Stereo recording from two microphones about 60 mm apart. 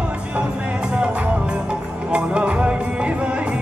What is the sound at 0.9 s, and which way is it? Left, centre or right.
Music, centre.